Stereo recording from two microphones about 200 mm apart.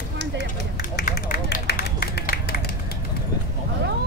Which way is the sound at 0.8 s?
50° left (ahead or behind).